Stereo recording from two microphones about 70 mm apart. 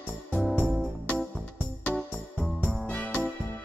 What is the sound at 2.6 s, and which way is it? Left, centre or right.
Music, centre.